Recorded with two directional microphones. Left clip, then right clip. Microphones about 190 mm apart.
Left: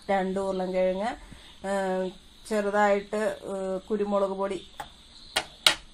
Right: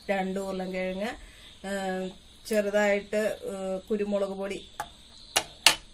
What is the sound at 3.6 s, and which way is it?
Speech, 20° left (ahead or behind).